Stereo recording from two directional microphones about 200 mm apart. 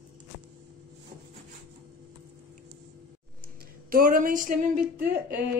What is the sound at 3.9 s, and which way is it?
Speech, 45° right (ahead or behind).